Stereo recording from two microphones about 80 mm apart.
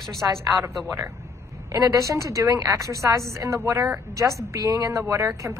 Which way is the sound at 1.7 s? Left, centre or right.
Right.